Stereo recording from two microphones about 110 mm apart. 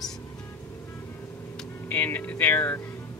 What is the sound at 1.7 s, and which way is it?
Speech, 20° left (ahead or behind).